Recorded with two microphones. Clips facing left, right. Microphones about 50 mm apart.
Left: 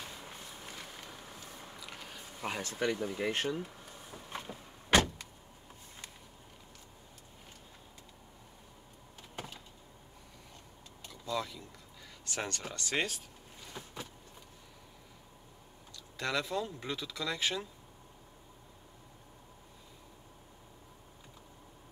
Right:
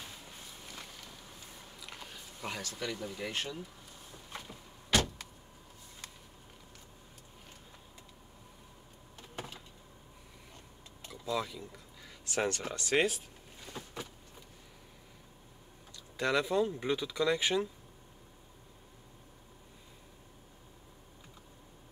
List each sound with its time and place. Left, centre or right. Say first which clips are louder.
0.2 s a sound: left 3 dB; left
2.4 s speech: left 2 dB; centre
2.7 s speech: left 5 dB; left
4.1 s vehicle: left 3 dB; left
11.1 s a sound: right 2 dB; centre
12.3 s speech: right 5 dB; centre
16.2 s speech: right 5 dB; centre